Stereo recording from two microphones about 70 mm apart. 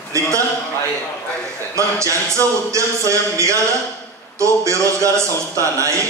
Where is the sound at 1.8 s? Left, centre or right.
Right.